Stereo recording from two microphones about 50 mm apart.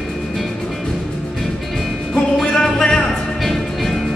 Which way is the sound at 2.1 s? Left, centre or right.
Centre.